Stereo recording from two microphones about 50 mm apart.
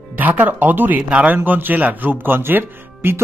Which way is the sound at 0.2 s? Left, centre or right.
Right.